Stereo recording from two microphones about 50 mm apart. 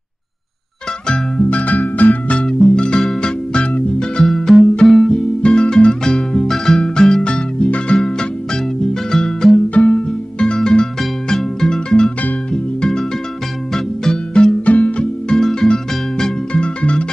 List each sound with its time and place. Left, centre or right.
1.0 s music: centre
1.6 s music: left
4.0 s music: centre
5.5 s music: centre
9.8 s music: left
13.7 s music: centre
14.6 s music: left
15.2 s music: centre